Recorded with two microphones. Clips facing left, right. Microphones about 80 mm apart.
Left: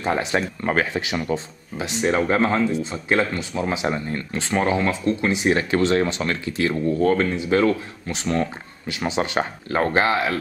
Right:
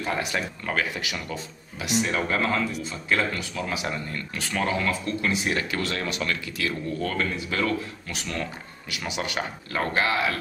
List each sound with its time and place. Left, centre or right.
0.0 s speech: left